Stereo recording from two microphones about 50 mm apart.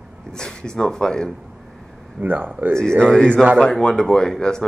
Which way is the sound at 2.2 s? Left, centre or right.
Right.